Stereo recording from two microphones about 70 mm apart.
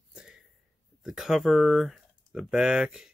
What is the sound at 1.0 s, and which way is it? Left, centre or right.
Speech, centre.